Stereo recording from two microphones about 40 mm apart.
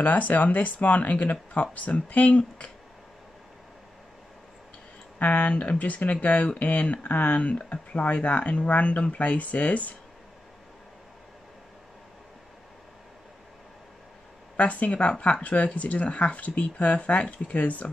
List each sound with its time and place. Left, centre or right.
0.0 s speech: left
5.2 s speech: left
6.4 s speech: left
14.6 s speech: left